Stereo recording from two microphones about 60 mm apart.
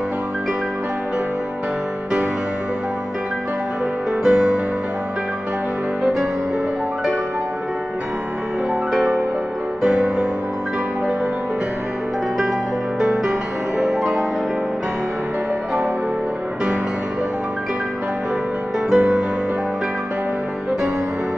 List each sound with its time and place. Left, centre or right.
4.2 s music: centre
8.9 s music: centre
13.7 s music: centre
18.9 s music: centre